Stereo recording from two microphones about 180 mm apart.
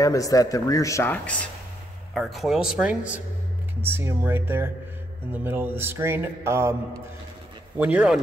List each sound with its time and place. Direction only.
0.0 s speech: 20° left (ahead or behind); by 3.2 s 5° right (ahead or behind)
3.8 s mantra: 10° right (ahead or behind)